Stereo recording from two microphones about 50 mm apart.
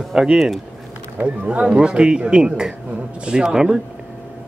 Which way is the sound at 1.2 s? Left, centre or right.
Right.